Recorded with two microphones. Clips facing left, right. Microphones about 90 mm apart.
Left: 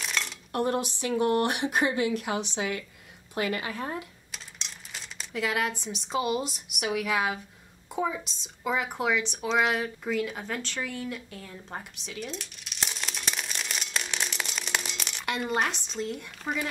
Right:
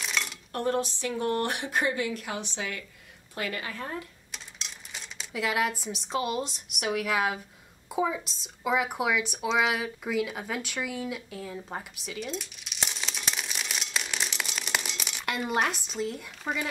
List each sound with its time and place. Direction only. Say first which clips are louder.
0.0 s a sound: even; centre (ahead or behind)
0.5 s a woman's voice: left 1 dB; 15° left (ahead or behind)
4.3 s speech: even; centre (ahead or behind)